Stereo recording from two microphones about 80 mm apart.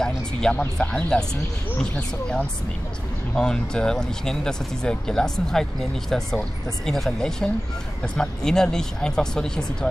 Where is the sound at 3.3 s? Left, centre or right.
Centre.